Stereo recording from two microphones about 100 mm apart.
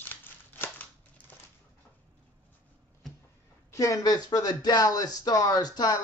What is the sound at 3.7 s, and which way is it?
Speech, 35° left (ahead or behind).